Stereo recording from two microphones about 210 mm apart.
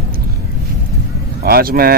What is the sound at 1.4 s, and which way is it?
Speech, 45° right (ahead or behind).